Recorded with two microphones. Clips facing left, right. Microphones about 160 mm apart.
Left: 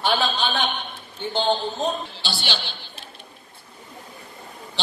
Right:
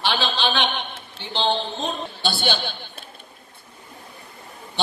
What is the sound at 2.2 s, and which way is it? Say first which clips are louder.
Speech: right 6 dB; 55° right (ahead or behind).